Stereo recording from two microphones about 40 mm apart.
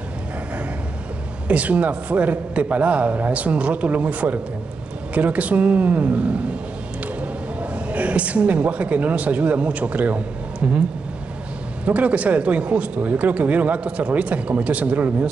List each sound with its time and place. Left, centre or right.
1.5 s speech: right
7.7 s speech: right
11.8 s speech: right